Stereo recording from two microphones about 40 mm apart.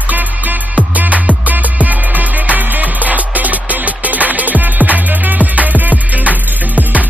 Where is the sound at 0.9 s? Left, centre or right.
Right.